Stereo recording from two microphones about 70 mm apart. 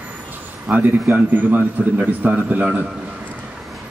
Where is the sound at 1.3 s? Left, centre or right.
Right.